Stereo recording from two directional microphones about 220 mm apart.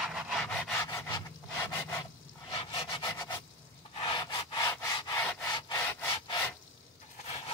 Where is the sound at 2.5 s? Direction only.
25° left (ahead or behind).